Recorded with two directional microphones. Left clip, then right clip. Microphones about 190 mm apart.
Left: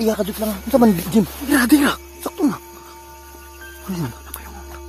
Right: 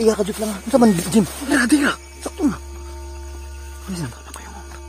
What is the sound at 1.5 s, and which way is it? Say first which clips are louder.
Music: left 2 dB; 20° left (ahead or behind).